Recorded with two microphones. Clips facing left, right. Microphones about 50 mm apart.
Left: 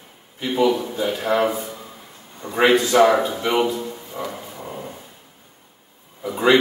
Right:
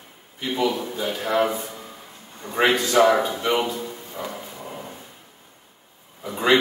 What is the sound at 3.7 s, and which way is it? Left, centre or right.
Music, centre.